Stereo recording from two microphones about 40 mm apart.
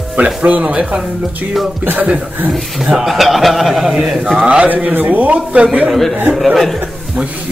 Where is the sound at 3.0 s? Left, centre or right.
Centre.